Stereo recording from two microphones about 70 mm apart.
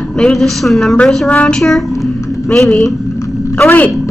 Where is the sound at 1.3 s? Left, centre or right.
Centre.